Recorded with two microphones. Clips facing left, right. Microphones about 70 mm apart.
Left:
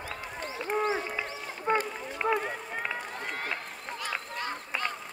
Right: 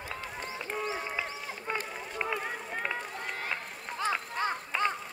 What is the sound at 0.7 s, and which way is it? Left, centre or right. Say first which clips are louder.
Run: left 7 dB; left.